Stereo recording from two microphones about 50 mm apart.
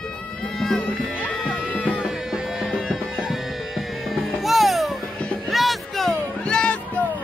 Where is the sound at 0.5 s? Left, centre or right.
Centre.